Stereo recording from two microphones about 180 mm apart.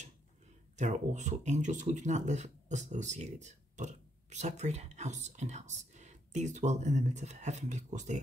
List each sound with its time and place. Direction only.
0.7 s speech: 40° right (ahead or behind)